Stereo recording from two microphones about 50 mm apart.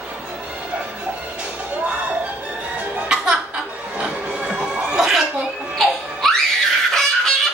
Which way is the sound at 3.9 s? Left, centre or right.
Right.